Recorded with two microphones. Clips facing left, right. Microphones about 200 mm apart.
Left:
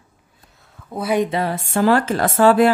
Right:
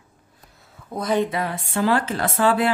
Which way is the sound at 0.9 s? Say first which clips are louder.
Left 2 dB; 10° left (ahead or behind).